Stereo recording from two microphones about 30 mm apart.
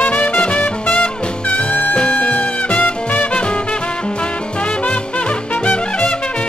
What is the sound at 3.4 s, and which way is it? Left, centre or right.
Music, left.